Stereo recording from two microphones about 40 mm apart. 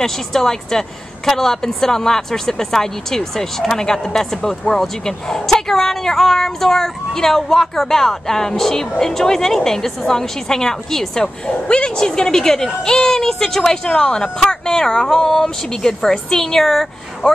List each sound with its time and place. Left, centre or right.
0.0 s a woman's voice: centre
11.4 s a woman's voice: left